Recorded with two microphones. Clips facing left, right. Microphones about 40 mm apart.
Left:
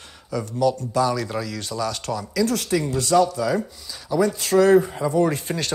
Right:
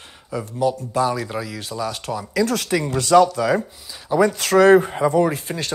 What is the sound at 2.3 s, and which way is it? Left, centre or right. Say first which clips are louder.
Speech: right 2 dB; right.